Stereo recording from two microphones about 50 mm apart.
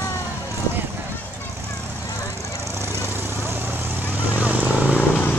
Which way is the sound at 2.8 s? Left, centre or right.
Right.